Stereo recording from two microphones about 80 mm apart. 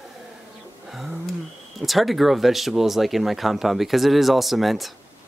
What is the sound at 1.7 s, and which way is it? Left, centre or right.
Speech, centre.